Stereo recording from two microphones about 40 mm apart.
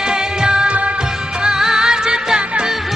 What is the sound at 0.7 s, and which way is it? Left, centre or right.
Music, right.